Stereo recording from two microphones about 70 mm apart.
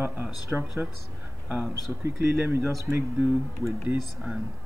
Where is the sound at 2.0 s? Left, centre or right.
Right.